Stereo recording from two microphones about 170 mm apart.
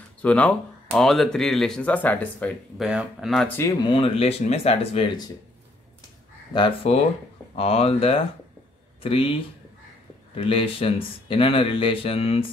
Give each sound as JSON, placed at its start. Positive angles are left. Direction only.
{"t": 0.2, "sound": "speech", "side_deg": 5}
{"t": 2.8, "sound": "speech", "side_deg": -5}
{"t": 3.4, "sound": "speech", "side_deg": 15}
{"t": 3.8, "sound": "speech", "side_deg": 30}
{"t": 6.5, "sound": "speech", "side_deg": 30}